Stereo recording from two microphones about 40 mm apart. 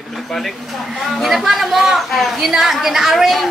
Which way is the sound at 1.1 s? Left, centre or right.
Centre.